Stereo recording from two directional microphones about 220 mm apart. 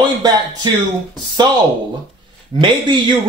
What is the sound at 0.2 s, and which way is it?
Speech, 20° right (ahead or behind).